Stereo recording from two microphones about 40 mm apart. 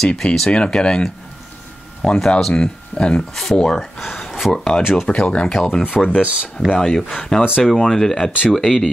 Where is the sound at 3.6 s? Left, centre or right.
Centre.